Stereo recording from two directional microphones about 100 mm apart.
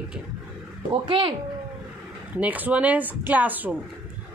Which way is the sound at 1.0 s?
55° right (ahead or behind).